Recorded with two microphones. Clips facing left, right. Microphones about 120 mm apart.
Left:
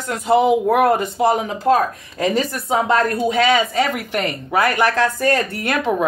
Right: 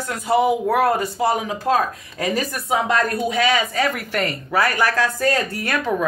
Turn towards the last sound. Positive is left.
turn(degrees=25)  # may be behind; listen again after turning